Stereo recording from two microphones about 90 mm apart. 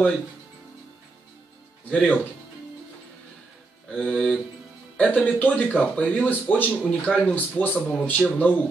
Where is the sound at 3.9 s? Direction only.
10° left (ahead or behind).